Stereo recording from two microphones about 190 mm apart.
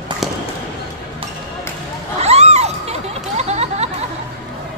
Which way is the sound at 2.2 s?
35° right (ahead or behind).